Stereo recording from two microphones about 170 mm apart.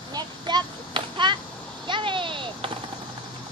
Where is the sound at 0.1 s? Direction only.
25° right (ahead or behind).